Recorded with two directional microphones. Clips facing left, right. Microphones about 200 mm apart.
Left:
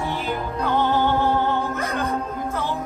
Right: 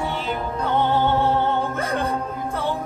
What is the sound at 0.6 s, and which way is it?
Music, 25° right (ahead or behind).